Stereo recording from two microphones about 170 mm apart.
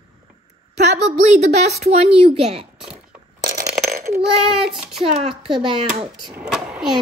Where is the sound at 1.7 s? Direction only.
40° right (ahead or behind).